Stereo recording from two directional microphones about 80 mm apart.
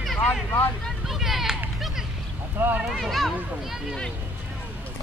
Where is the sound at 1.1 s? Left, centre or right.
Centre.